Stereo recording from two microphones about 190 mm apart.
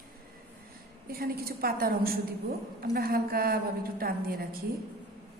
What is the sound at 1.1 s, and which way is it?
A woman's voice, 50° right (ahead or behind).